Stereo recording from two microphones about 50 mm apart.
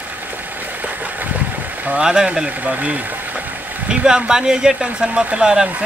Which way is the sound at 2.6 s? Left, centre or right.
Right.